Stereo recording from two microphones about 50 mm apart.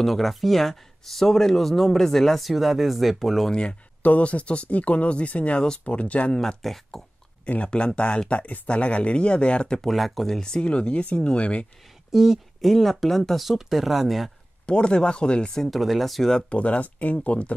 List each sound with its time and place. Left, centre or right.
0.0 s speech: centre
4.0 s speech: left
6.3 s speech: centre
7.4 s speech: left
9.8 s speech: centre; by 11.6 s left
12.1 s speech: centre
14.7 s speech: centre
15.7 s speech: centre
16.4 s speech: left